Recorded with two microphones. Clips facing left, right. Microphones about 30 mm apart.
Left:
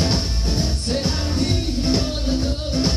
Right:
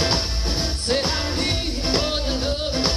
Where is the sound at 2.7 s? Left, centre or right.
Right.